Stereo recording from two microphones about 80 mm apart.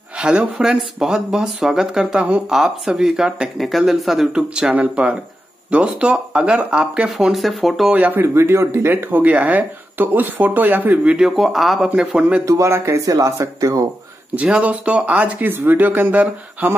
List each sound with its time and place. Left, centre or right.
0.2 s speech: centre
7.9 s speech: right
8.4 s speech: right
11.1 s speech: centre
11.9 s speech: centre
12.4 s speech: right
13.0 s speech: right
14.3 s speech: centre